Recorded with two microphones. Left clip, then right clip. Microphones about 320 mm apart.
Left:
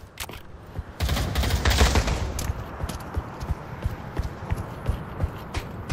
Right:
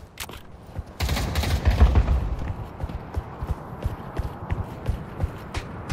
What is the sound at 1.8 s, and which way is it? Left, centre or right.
Fusillade, left.